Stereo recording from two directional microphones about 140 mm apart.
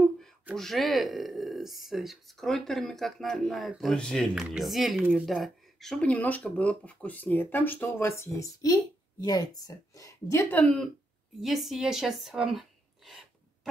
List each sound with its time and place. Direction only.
0.6 s speech: centre (ahead or behind)
11.4 s speech: centre (ahead or behind)